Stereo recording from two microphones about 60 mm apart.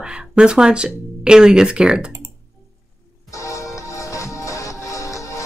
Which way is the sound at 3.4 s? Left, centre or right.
Left.